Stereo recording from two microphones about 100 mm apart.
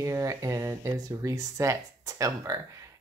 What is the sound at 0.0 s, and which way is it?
Speech, 30° right (ahead or behind).